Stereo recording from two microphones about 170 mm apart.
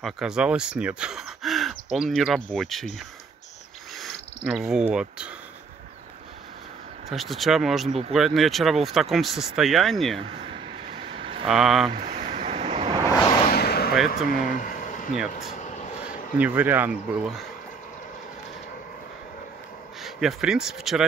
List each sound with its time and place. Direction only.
0.0 s speech: 5° right (ahead or behind)
4.5 s speech: 5° right (ahead or behind)
7.1 s speech: centre (ahead or behind)
11.1 s vehicle: 35° right (ahead or behind)
11.4 s speech: centre (ahead or behind)
11.9 s a sound: 55° right (ahead or behind); by 13.0 s 35° right (ahead or behind)
13.5 s gunshot: 65° left (ahead or behind)
14.1 s speech: 50° left (ahead or behind)
15.5 s vehicle: 45° left (ahead or behind)
16.3 s speech: 10° right (ahead or behind)
20.0 s speech: centre (ahead or behind)